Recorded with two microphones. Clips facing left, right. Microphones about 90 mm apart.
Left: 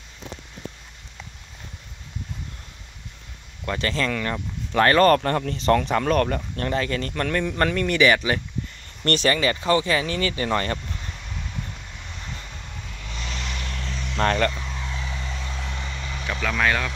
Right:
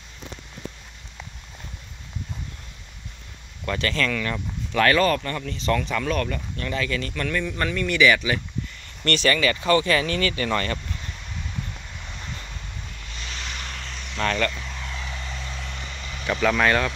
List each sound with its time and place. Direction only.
3.6 s speech: 25° left (ahead or behind)
5.0 s speech: 55° left (ahead or behind); by 9.3 s 40° left (ahead or behind)
9.3 s speech: 25° left (ahead or behind)
14.1 s speech: 35° left (ahead or behind)
16.3 s vehicle: 10° right (ahead or behind)